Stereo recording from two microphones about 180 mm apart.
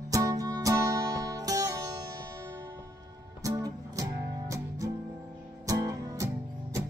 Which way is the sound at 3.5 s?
20° right (ahead or behind).